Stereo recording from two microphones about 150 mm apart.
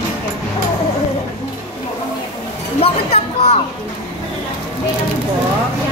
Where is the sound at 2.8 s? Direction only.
45° left (ahead or behind).